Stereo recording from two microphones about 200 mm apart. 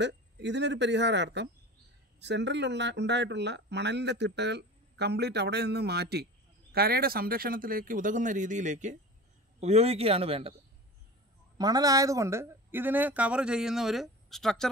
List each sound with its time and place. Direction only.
0.0 s a man's voice: 60° right (ahead or behind); by 10.5 s 30° right (ahead or behind)
11.5 s speech: 20° right (ahead or behind); by 14.7 s centre (ahead or behind)